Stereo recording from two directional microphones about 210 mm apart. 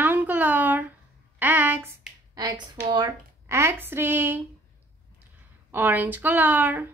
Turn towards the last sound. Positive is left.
turn(degrees=-10)  # may be behind; listen again after turning